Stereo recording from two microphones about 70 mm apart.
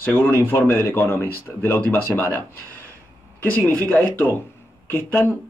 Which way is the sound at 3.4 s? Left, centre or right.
Left.